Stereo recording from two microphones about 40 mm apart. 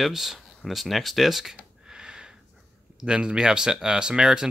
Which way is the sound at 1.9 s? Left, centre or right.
Centre.